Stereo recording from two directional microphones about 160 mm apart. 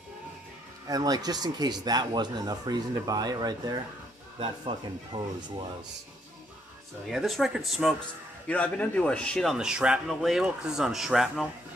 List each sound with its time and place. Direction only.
0.8 s speech: 25° right (ahead or behind)
7.1 s speech: centre (ahead or behind)